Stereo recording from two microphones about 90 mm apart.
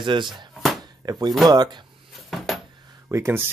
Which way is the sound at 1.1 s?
45° right (ahead or behind).